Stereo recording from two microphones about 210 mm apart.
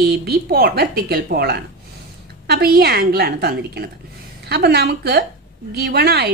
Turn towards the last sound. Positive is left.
turn(degrees=-50)  # may be behind; listen again after turning